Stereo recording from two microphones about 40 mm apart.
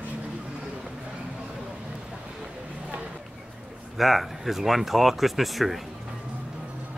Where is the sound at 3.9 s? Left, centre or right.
Centre.